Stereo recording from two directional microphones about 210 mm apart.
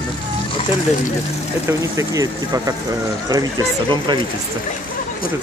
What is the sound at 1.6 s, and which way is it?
Speech, 15° right (ahead or behind).